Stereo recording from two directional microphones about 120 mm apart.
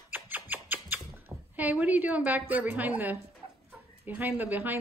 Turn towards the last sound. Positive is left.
turn(degrees=-15)  # may be behind; listen again after turning